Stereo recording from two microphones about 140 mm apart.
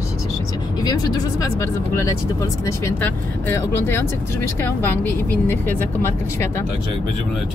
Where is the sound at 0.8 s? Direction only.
25° left (ahead or behind).